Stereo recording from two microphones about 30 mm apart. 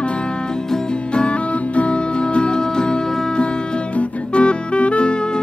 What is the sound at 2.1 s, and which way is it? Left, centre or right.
Music, left.